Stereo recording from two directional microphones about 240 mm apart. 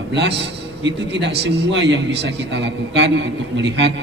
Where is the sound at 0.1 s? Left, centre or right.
Right.